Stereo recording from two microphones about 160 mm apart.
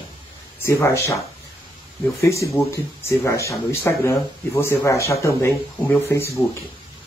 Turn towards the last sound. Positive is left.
turn(degrees=15)  # may be behind; listen again after turning